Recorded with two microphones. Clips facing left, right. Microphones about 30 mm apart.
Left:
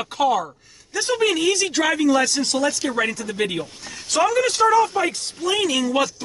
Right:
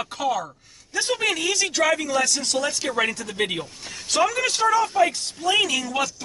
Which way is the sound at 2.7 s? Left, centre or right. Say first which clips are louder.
Left 2 dB; centre.